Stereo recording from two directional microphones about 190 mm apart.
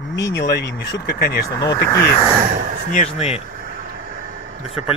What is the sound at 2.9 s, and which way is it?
Speech, 35° left (ahead or behind).